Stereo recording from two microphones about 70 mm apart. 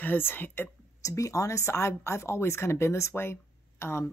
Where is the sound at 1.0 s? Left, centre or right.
Left.